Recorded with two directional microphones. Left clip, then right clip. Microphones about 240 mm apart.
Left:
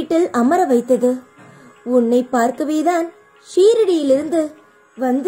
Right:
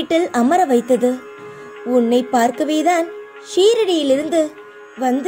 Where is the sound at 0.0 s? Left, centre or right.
Right.